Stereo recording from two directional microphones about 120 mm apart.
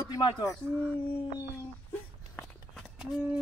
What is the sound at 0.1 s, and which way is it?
Speech, 30° left (ahead or behind).